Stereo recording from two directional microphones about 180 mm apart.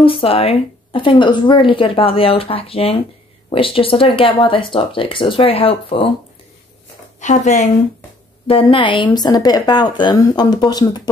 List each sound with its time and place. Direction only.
0.0 s speech: 30° left (ahead or behind)
7.2 s speech: 40° left (ahead or behind)
8.5 s speech: 30° left (ahead or behind)